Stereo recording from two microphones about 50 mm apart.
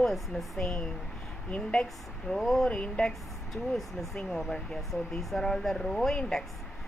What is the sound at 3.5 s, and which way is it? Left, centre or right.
Speech, centre.